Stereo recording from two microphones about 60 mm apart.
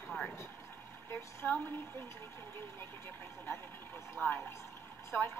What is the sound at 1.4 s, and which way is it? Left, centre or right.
Speech, right.